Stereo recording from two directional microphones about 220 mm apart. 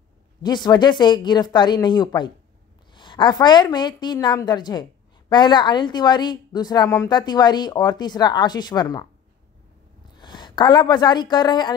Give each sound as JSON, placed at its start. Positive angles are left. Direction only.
{"t": 0.4, "sound": "a woman's voice", "side_deg": 20}
{"t": 10.1, "sound": "a woman's voice", "side_deg": 20}